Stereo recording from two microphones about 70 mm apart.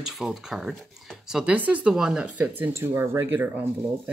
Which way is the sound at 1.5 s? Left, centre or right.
Centre.